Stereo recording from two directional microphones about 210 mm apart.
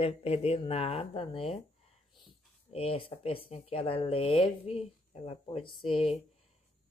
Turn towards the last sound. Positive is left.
turn(degrees=25)  # may be behind; listen again after turning